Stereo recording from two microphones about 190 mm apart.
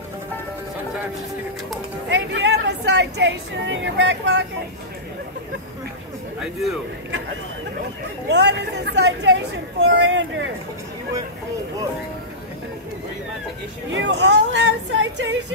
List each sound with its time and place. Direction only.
2.0 s speech: 70° right (ahead or behind)
8.3 s speech: 65° right (ahead or behind)
13.9 s speech: 70° right (ahead or behind)